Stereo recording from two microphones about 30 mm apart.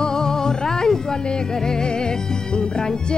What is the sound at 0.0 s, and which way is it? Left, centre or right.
Music, left.